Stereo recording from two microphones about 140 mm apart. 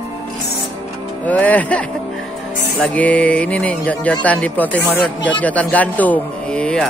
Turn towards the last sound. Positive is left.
turn(degrees=5)  # may be behind; listen again after turning